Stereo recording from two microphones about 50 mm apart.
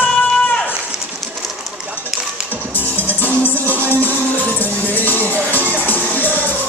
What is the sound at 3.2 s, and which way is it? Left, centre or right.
Music, left.